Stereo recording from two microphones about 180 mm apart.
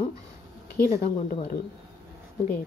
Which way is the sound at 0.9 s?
40° left (ahead or behind).